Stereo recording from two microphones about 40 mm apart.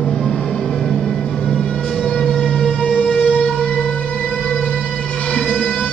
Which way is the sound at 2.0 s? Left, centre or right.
Centre.